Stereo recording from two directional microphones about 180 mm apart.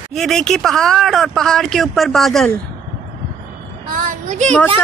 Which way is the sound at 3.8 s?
45° right (ahead or behind).